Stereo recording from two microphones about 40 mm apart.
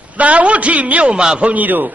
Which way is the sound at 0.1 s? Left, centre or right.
Right.